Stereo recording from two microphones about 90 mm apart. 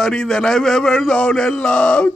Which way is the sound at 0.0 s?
5° left (ahead or behind).